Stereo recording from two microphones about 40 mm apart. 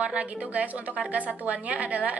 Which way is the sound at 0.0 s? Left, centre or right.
Right.